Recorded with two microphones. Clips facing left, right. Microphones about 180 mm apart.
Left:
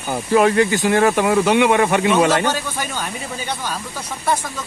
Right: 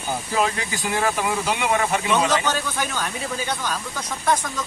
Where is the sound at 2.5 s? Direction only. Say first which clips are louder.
Left 1 dB; 10° left (ahead or behind).